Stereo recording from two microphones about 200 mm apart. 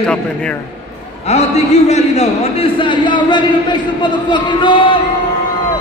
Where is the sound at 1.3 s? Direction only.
35° left (ahead or behind).